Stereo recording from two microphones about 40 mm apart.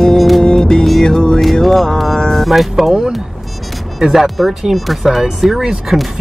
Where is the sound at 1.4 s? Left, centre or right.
Centre.